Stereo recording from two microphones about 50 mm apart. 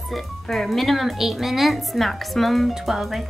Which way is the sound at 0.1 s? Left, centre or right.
Centre.